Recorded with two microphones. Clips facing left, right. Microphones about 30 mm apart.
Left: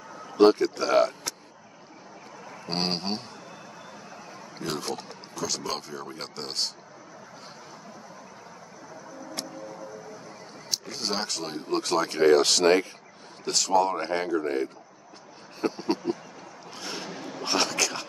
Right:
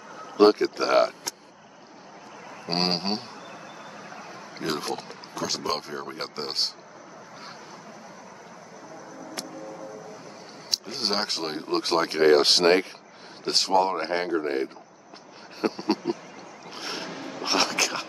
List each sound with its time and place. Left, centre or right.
0.3 s speech: right
2.4 s a man's voice: centre
4.1 s a sound: right
4.6 s speech: right
10.7 s speech: right
15.6 s a sound: right